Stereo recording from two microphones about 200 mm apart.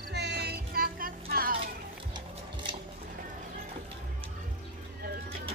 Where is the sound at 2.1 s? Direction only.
25° right (ahead or behind).